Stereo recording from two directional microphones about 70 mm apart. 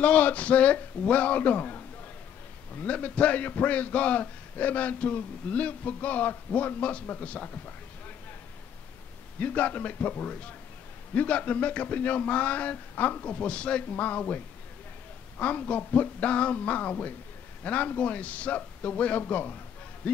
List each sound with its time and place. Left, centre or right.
0.0 s a man's voice: left
9.4 s a man's voice: left